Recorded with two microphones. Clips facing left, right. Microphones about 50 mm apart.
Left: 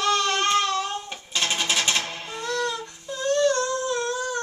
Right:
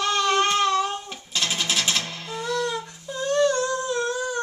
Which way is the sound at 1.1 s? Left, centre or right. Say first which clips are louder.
Left 1 dB; centre.